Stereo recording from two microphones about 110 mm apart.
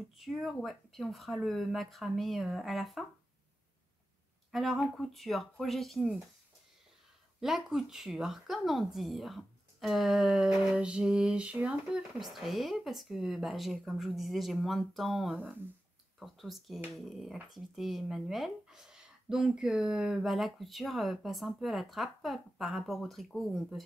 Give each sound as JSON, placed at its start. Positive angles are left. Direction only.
{"t": 0.2, "sound": "speech", "side_deg": 0}
{"t": 4.5, "sound": "speech", "side_deg": 0}
{"t": 7.3, "sound": "speech", "side_deg": -5}